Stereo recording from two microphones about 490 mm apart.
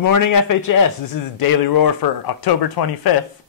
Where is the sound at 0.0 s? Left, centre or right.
Left.